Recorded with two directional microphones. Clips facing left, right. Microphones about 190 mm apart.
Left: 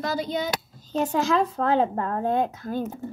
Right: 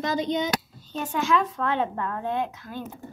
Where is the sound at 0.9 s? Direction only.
35° left (ahead or behind).